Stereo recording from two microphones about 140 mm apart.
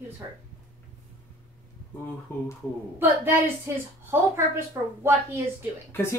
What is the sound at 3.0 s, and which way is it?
A woman's voice, 15° right (ahead or behind).